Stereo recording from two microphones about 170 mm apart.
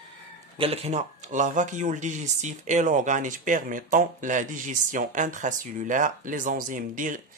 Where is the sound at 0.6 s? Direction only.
35° right (ahead or behind).